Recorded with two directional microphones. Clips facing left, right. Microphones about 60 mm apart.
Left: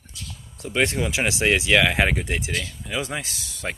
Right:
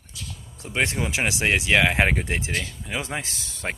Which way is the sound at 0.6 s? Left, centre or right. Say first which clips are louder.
Left 2 dB; right.